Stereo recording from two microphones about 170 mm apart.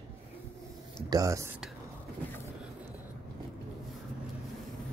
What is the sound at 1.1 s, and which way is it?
Speech, 20° right (ahead or behind).